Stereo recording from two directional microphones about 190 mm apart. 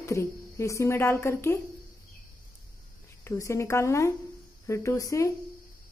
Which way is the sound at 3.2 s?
15° left (ahead or behind).